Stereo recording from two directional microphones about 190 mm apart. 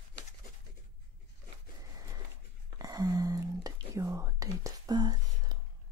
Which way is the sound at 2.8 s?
20° right (ahead or behind).